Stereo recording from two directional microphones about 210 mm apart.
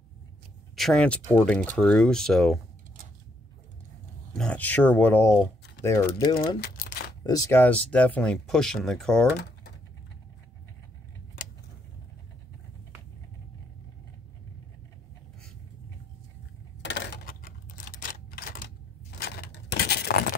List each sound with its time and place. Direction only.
0.7 s speech: 5° left (ahead or behind)
4.4 s speech: 5° left (ahead or behind)
6.6 s crumpling: 50° left (ahead or behind)
7.2 s speech: 15° left (ahead or behind)
16.8 s typewriter: 55° left (ahead or behind)